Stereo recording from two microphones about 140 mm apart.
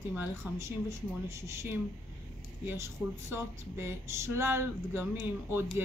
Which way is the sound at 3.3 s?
20° right (ahead or behind).